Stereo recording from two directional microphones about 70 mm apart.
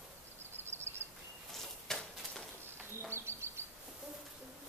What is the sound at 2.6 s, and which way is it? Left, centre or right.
Bird, right.